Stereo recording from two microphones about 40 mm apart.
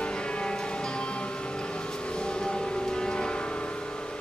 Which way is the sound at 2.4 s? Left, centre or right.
Centre.